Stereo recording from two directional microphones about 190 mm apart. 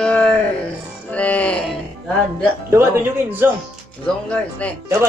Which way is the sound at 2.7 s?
15° right (ahead or behind).